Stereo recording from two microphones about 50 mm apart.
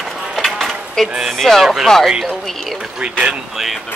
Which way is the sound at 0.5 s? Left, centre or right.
Centre.